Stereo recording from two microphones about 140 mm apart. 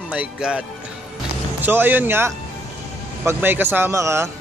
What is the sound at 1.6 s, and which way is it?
Speech, 15° right (ahead or behind).